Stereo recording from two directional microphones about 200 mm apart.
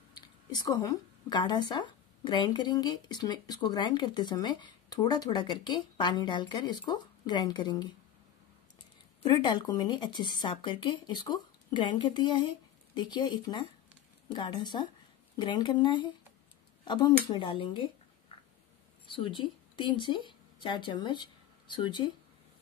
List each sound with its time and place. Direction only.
0.5 s speech: 20° left (ahead or behind)
9.3 s speech: 25° left (ahead or behind)
19.0 s speech: 25° left (ahead or behind)